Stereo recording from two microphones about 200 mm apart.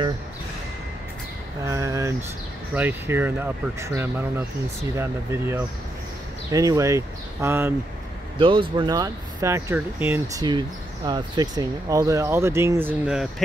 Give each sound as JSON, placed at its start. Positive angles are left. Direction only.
{"t": 1.7, "sound": "speech", "side_deg": -15}
{"t": 8.4, "sound": "speech", "side_deg": -25}